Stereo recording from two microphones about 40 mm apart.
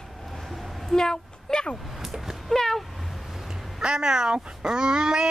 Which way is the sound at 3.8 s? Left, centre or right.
Centre.